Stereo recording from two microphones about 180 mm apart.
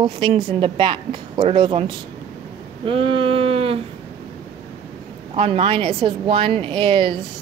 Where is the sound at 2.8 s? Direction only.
30° right (ahead or behind).